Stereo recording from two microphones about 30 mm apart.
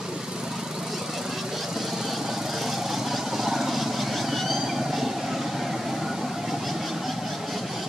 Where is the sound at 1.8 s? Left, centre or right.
Centre.